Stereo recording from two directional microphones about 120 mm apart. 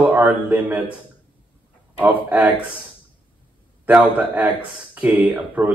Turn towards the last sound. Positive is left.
turn(degrees=-15)  # may be behind; listen again after turning